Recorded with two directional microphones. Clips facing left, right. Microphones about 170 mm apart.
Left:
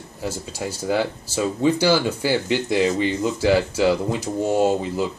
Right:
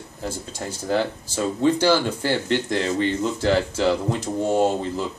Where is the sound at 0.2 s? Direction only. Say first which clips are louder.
Left 2 dB; 10° left (ahead or behind).